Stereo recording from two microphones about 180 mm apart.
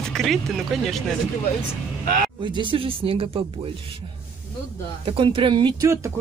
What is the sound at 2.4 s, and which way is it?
Speech, 25° right (ahead or behind).